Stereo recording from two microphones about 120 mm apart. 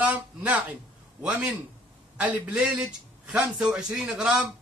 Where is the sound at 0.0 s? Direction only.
10° right (ahead or behind).